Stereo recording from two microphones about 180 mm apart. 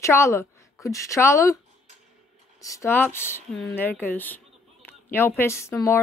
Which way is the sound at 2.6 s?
15° left (ahead or behind).